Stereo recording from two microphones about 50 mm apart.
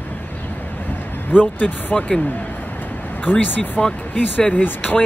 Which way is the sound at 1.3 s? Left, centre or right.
Left.